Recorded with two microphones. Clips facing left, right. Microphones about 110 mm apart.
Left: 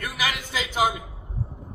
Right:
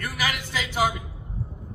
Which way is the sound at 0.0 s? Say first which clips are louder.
Even; 15° left (ahead or behind).